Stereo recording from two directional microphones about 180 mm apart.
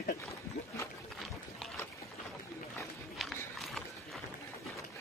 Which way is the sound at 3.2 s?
Centre (ahead or behind).